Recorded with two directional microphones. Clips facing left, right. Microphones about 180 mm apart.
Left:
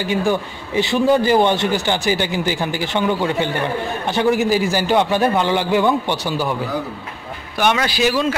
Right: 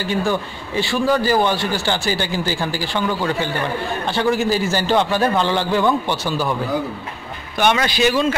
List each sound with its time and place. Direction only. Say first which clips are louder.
0.0 s a man's voice: left 2 dB; 15° left (ahead or behind)
7.5 s a man's voice: even; 5° left (ahead or behind)